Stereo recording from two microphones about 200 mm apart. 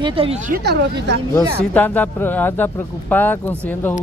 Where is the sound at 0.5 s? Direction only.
55° right (ahead or behind).